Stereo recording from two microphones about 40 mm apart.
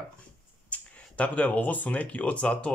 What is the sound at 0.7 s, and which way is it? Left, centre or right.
Speech, left.